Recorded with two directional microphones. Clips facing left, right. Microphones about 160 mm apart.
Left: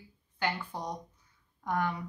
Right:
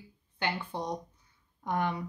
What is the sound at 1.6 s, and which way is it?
Speech, 25° right (ahead or behind).